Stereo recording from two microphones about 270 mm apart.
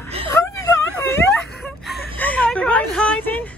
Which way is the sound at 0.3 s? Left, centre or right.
Centre.